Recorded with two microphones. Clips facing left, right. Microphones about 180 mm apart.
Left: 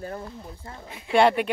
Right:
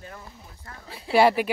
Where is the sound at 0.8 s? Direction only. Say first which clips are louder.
Right 2 dB; 35° right (ahead or behind).